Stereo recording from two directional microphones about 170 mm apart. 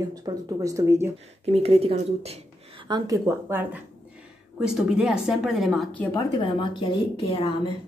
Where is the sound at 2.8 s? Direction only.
25° right (ahead or behind).